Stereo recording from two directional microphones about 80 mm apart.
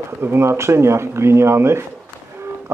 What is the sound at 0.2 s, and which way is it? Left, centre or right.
Speech, right.